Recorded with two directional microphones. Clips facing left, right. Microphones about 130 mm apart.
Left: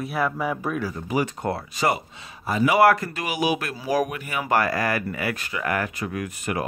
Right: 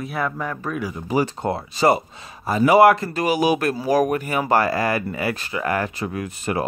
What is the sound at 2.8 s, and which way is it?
Speech, 25° right (ahead or behind).